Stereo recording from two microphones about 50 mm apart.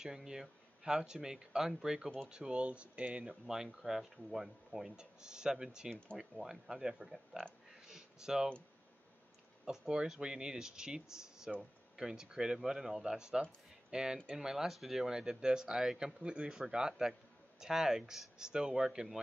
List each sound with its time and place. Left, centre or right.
0.0 s speech: centre
3.4 s speech: centre
7.9 s a sound: centre
9.7 s speech: centre